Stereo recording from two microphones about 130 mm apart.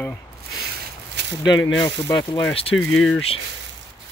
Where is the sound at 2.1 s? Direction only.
30° left (ahead or behind).